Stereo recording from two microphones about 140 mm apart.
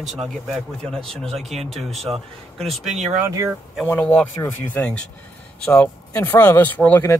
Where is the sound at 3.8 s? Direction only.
10° left (ahead or behind).